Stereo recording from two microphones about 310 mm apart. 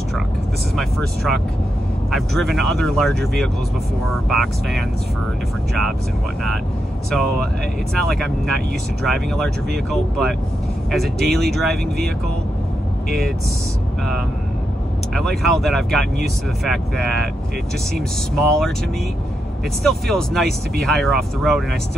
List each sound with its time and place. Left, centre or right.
0.7 s speech: centre
7.1 s speech: centre
15.1 s speech: centre
19.8 s speech: centre